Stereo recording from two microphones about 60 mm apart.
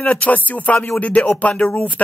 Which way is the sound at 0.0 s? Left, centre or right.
Left.